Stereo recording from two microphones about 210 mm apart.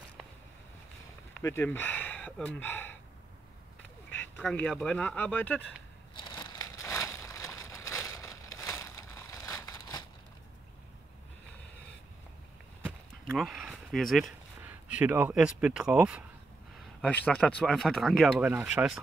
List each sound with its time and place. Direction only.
1.4 s speech: 10° left (ahead or behind)
4.4 s speech: 5° left (ahead or behind)
6.1 s a sound: 20° left (ahead or behind)
8.5 s crushing: 15° left (ahead or behind)
12.8 s speech: centre (ahead or behind)
17.0 s speech: 5° left (ahead or behind)